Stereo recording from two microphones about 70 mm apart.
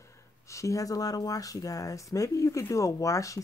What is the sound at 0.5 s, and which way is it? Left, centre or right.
Speech, left.